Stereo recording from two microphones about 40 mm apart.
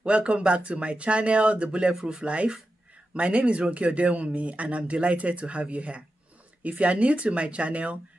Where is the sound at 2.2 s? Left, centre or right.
Right.